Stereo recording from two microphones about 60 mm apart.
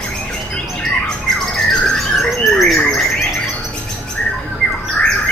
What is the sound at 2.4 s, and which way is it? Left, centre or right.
Bird, centre.